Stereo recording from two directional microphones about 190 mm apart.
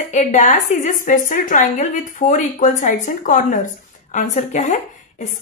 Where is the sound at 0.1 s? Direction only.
40° left (ahead or behind).